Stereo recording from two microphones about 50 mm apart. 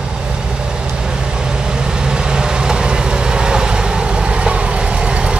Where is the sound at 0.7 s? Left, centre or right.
Centre.